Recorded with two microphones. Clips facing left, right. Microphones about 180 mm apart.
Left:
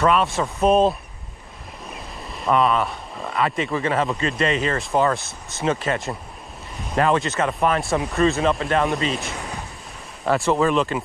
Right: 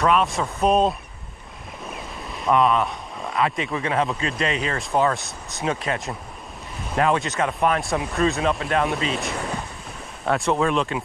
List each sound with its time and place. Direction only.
0.0 s speech: centre (ahead or behind)
1.9 s waves: centre (ahead or behind)
3.3 s speech: centre (ahead or behind)
9.3 s waves: 40° right (ahead or behind)
10.2 s speech: centre (ahead or behind)